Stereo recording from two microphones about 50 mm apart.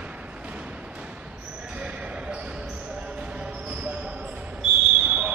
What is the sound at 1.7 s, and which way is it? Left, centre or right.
Basketball bounce, right.